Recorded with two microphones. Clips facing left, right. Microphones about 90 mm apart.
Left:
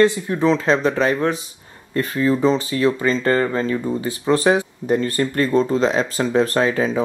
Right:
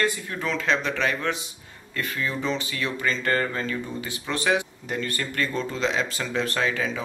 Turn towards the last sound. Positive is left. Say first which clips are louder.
# left 8 dB
turn(degrees=35)  # may be behind; listen again after turning